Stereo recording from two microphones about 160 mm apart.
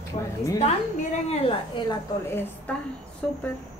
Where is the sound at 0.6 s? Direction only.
40° left (ahead or behind).